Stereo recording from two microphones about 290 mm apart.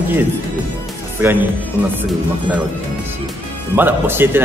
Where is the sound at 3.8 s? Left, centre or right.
Centre.